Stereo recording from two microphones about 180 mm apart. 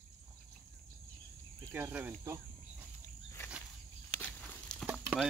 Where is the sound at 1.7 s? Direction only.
10° right (ahead or behind).